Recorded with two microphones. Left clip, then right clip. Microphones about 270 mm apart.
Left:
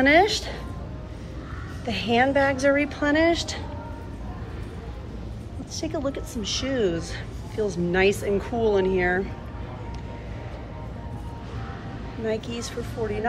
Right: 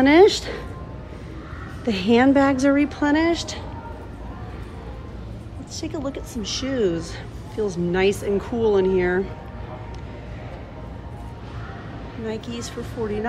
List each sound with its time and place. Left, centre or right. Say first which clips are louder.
0.0 s speech: right 4 dB; centre
1.9 s speech: right 4 dB; centre
5.8 s speech: left 1 dB; centre
12.3 s speech: left 2 dB; centre